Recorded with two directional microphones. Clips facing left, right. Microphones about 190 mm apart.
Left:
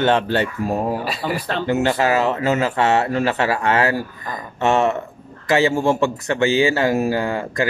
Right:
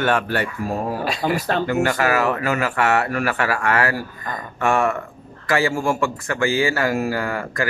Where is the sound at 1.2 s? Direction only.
45° right (ahead or behind).